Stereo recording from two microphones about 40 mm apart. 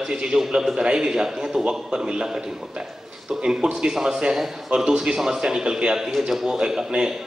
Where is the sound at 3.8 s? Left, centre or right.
Centre.